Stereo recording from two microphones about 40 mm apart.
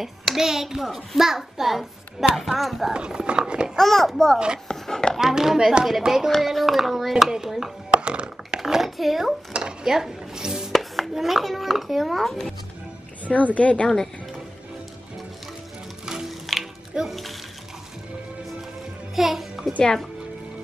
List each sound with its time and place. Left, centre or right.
0.0 s a child's voice: centre
2.9 s speech: right
3.7 s speech: centre
5.1 s a child's voice: centre
8.0 s a sound: right
8.5 s a sound: centre
9.6 s dishes: centre
10.7 s a child's voice: centre
13.3 s a woman's voice: left
16.1 s music: centre
17.0 s speech: right
19.1 s music: centre